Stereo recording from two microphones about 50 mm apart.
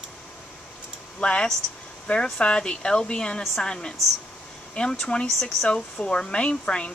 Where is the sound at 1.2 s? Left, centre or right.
Left.